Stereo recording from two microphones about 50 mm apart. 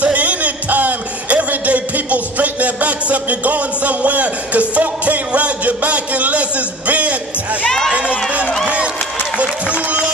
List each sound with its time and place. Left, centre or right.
0.0 s a sound: right
6.9 s music: right
9.4 s run: right